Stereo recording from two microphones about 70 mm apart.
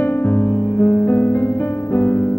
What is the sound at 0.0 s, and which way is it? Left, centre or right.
Music, left.